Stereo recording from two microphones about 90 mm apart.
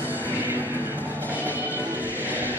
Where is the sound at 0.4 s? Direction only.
20° right (ahead or behind).